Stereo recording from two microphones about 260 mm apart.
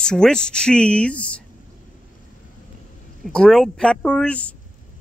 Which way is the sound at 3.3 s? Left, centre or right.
Centre.